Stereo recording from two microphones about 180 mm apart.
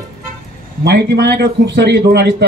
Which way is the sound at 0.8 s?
65° right (ahead or behind).